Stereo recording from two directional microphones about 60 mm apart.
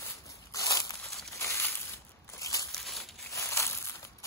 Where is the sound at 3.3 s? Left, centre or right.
Left.